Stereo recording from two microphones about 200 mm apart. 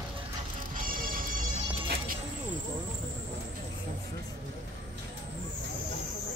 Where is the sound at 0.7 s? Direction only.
45° right (ahead or behind).